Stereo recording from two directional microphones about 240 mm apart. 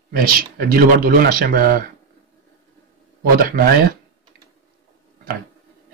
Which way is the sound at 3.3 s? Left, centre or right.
Right.